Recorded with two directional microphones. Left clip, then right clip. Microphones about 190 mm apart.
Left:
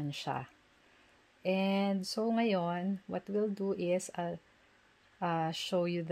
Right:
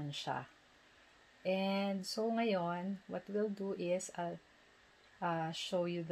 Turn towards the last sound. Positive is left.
turn(degrees=55)  # may be behind; listen again after turning